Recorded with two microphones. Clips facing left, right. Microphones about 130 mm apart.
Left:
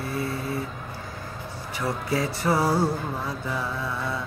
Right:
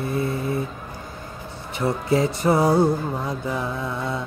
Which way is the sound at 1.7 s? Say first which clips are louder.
Right 6 dB; 25° right (ahead or behind).